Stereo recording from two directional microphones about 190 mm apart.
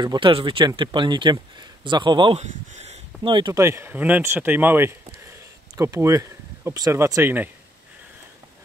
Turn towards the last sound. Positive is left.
turn(degrees=-10)  # may be behind; listen again after turning